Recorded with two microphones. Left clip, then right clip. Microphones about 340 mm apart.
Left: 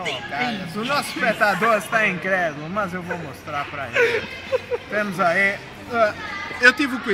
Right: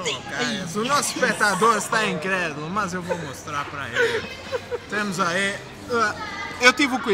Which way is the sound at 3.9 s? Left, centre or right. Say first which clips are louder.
Left 3 dB; centre.